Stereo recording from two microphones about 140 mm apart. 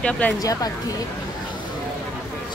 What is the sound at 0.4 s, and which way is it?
Speech, 25° left (ahead or behind).